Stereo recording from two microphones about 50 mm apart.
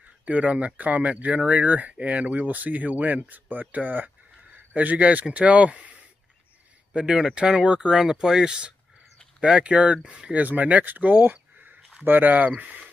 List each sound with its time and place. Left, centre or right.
0.2 s speech: right
6.9 s speech: centre
10.3 s speech: right